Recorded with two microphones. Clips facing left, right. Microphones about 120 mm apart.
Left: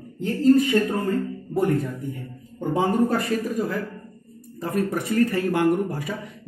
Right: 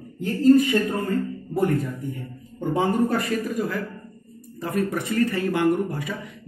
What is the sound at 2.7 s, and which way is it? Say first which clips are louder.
A man's voice: left 1 dB; 35° left (ahead or behind).